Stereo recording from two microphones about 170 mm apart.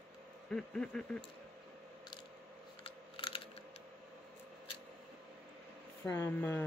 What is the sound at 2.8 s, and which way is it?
Scissors, 30° left (ahead or behind).